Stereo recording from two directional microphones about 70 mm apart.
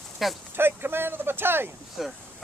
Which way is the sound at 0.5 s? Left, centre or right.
Right.